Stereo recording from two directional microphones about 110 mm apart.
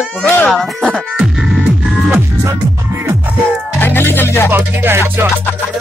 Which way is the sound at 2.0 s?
20° right (ahead or behind).